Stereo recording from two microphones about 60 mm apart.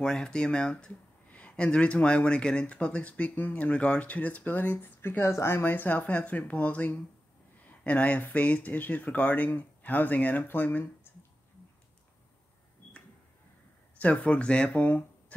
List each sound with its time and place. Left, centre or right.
0.0 s speech: centre; by 5.3 s left
5.3 s speech: left
5.6 s speech: left
13.9 s speech: left